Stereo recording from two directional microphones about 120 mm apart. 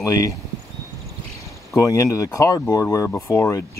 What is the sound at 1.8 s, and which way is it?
Speech, 25° left (ahead or behind).